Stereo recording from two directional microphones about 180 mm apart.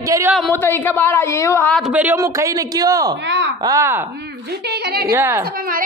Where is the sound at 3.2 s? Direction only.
80° right.